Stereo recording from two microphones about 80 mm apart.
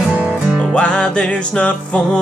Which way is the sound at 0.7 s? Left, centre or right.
Centre.